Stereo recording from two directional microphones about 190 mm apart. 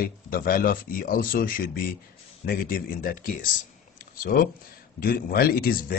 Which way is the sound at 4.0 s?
50° left (ahead or behind).